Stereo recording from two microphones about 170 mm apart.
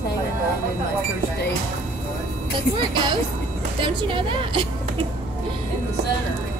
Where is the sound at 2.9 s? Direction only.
30° right (ahead or behind).